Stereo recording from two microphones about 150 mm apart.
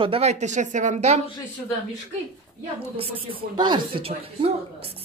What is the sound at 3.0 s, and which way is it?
Speech, 35° right (ahead or behind).